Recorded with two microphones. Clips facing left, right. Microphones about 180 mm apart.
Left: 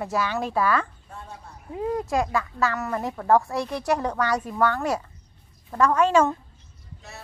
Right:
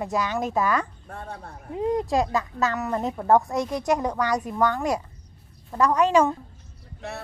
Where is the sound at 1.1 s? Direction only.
60° right (ahead or behind).